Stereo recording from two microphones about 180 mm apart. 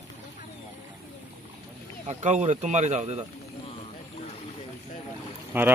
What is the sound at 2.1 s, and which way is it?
Speech, 40° right (ahead or behind).